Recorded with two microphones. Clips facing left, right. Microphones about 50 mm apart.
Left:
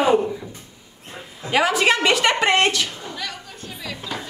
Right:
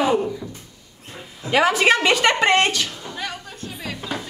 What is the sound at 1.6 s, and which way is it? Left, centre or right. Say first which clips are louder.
A woman's voice: right 1 dB; centre.